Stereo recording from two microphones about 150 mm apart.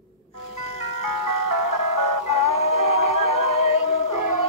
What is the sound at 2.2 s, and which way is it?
Music, 45° left (ahead or behind).